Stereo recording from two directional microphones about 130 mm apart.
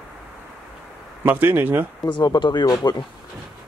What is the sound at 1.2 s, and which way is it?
Speech, 15° right (ahead or behind).